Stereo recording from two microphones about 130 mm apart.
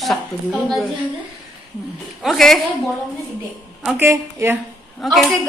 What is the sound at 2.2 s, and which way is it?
Speech, centre (ahead or behind).